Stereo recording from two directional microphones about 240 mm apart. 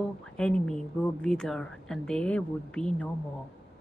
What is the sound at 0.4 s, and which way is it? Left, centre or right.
Speech, centre.